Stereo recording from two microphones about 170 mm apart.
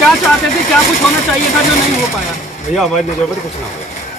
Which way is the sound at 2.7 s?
Centre (ahead or behind).